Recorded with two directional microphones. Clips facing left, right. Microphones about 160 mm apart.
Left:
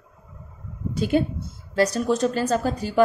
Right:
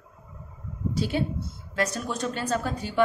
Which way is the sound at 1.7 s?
35° left (ahead or behind).